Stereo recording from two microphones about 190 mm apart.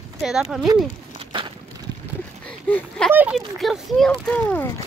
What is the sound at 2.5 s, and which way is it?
Speech, 5° left (ahead or behind).